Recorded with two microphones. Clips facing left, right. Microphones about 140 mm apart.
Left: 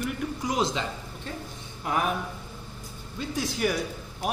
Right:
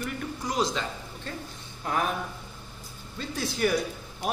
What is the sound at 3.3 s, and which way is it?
Speech, 15° left (ahead or behind).